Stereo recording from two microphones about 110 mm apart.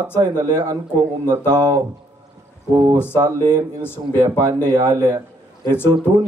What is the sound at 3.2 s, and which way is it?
Speech, 40° right (ahead or behind).